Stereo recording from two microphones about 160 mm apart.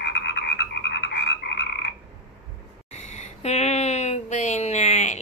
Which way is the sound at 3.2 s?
40° left (ahead or behind).